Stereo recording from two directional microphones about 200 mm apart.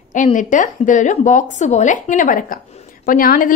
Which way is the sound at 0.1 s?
40° left (ahead or behind).